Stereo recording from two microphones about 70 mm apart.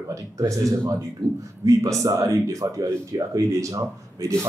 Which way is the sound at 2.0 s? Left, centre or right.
Right.